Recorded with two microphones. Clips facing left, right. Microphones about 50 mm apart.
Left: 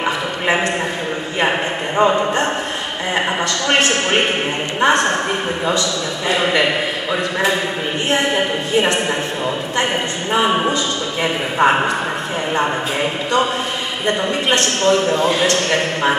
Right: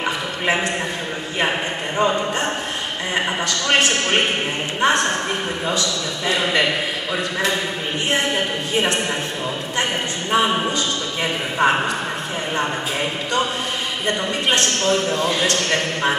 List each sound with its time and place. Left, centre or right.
0.0 s a sound: centre
2.0 s a man's voice: centre
10.3 s a man's voice: centre
14.6 s a man's voice: centre
15.2 s a man's voice: centre
15.7 s a man's voice: centre